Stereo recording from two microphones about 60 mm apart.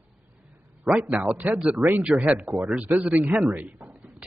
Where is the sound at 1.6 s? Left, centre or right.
Centre.